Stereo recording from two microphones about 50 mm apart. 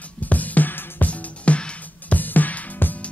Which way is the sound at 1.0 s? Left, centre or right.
Left.